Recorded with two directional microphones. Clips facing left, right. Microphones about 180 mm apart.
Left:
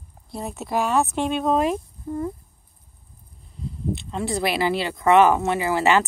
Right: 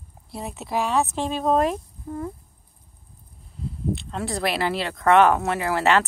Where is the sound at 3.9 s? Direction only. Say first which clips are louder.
Left 2 dB; centre (ahead or behind).